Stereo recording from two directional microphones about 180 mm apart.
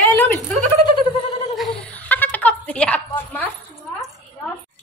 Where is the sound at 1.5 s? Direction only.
10° left (ahead or behind).